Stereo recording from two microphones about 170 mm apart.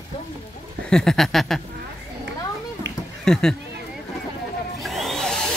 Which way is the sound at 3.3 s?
5° left (ahead or behind).